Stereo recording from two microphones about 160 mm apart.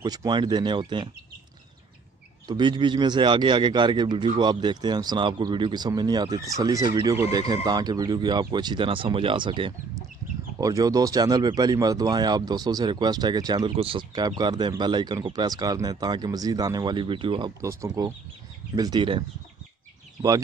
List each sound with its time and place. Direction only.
0.0 s speech: 25° right (ahead or behind)
2.4 s speech: 25° right (ahead or behind)
17.6 s speech: 20° right (ahead or behind)
18.8 s speech: 30° right (ahead or behind)